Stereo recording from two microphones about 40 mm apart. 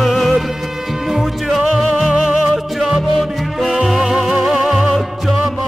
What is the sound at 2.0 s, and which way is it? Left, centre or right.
Music, right.